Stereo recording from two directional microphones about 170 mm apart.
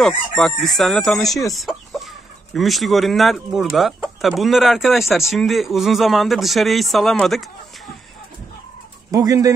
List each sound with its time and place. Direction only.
0.0 s speech: centre (ahead or behind)
9.1 s speech: 20° right (ahead or behind)